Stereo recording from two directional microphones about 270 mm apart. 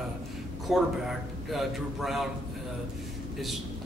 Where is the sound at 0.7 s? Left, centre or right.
Centre.